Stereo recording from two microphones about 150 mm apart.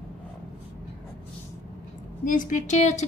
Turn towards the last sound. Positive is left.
turn(degrees=50)  # may be behind; listen again after turning